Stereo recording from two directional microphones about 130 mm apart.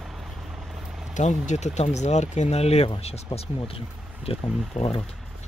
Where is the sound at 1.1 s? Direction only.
65° left (ahead or behind); by 5.0 s 50° left (ahead or behind).